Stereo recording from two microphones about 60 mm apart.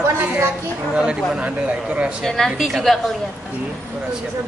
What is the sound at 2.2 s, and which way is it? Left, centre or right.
Speech, centre.